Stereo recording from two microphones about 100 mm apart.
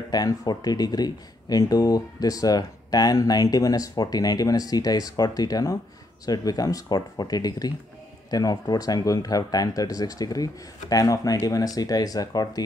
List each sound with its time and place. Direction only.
0.1 s speech: 40° left (ahead or behind)